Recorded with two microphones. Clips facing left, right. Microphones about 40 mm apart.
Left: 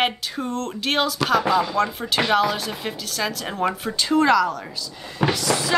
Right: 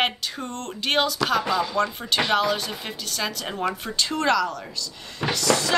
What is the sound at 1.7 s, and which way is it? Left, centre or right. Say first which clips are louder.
Speech: left 2 dB; centre.